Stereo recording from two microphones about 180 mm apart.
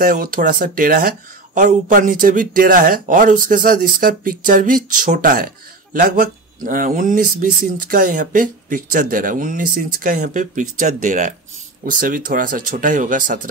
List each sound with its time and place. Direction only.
0.0 s speech: 50° right (ahead or behind)